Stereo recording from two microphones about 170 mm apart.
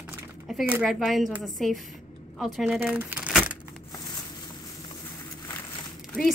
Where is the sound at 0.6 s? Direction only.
5° right (ahead or behind).